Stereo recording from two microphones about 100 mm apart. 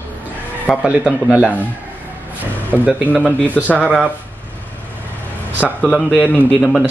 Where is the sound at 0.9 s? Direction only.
10° right (ahead or behind).